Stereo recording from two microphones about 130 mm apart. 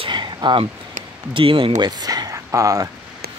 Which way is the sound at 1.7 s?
30° right (ahead or behind).